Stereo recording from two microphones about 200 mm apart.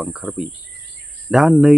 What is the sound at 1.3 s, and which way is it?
Speech, centre (ahead or behind).